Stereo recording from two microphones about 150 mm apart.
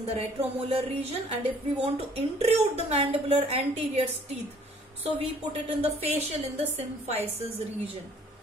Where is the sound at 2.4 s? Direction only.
40° right (ahead or behind).